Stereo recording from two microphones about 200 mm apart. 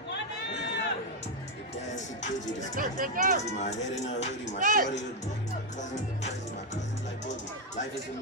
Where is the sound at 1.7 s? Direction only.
35° left (ahead or behind).